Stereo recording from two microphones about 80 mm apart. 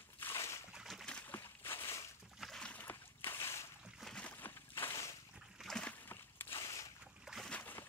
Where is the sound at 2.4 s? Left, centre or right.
Centre.